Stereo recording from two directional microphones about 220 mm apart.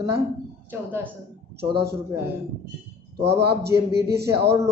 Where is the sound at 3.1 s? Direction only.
50° right (ahead or behind).